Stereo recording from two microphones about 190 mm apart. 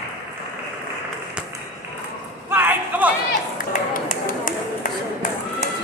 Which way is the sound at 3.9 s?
45° left (ahead or behind).